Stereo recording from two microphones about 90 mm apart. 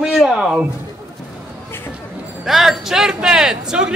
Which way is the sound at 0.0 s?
5° right (ahead or behind).